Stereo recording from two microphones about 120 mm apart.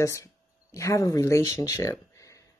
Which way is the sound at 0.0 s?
25° left (ahead or behind).